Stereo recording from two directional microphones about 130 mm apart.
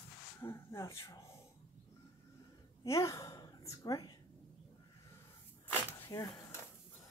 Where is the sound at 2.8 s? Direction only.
25° left (ahead or behind).